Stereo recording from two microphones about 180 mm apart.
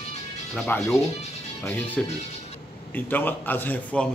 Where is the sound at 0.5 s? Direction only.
15° left (ahead or behind).